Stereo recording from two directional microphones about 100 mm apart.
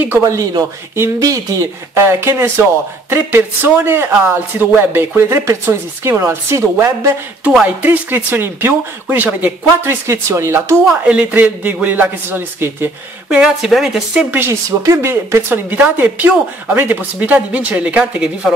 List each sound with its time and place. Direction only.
0.2 s a man's voice: 40° right (ahead or behind)
7.6 s a man's voice: 15° right (ahead or behind)
11.1 s a man's voice: 15° right (ahead or behind)
13.3 s speech: 10° right (ahead or behind)
14.3 s a man's voice: 25° right (ahead or behind); by 18.5 s 10° right (ahead or behind)